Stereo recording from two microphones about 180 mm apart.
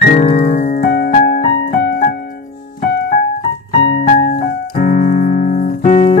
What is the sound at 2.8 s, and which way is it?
Music, 55° left (ahead or behind).